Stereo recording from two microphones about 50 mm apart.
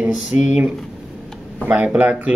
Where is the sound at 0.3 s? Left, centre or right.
Right.